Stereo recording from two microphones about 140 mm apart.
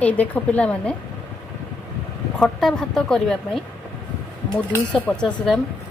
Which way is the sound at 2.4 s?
5° left (ahead or behind).